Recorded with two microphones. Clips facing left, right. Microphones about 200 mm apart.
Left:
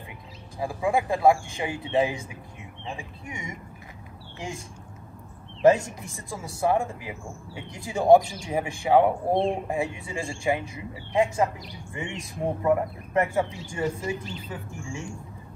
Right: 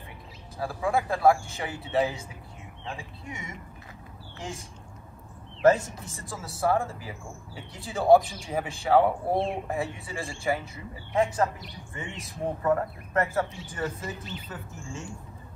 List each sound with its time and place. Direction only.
0.6 s speech: 15° left (ahead or behind)
5.6 s speech: 15° left (ahead or behind)